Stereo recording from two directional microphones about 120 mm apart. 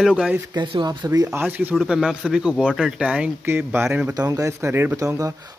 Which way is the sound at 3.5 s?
20° right (ahead or behind).